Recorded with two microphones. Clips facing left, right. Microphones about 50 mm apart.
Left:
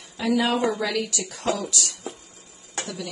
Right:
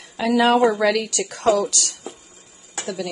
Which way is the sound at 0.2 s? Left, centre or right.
Right.